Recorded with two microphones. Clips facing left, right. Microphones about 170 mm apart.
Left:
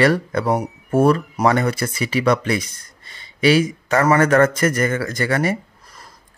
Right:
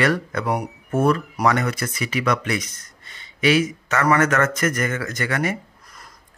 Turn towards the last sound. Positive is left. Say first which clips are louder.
# left 4 dB
turn(degrees=35)  # may be behind; listen again after turning